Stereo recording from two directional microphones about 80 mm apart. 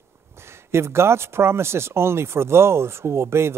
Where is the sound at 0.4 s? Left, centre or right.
Right.